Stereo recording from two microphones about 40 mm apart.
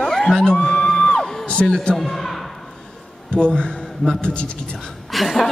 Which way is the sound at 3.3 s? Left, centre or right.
Left.